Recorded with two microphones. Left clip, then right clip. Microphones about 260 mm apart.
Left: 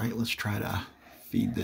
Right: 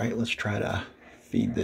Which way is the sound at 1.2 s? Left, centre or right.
Centre.